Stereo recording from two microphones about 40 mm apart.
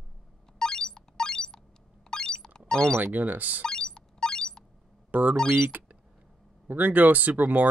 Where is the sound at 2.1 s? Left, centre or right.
Centre.